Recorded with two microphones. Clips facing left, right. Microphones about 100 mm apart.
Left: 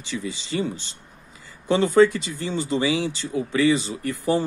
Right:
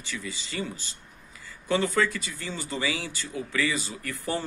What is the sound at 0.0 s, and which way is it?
Speech, 20° left (ahead or behind).